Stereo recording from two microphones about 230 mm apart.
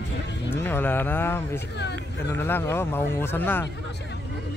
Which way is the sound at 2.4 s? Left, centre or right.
Centre.